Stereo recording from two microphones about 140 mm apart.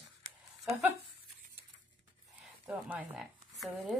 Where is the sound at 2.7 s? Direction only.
10° right (ahead or behind).